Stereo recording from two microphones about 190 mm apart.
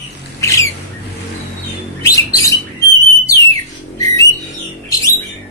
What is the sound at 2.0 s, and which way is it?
Bird, 15° left (ahead or behind).